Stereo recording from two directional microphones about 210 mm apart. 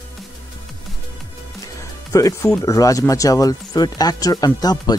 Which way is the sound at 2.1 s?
15° left (ahead or behind).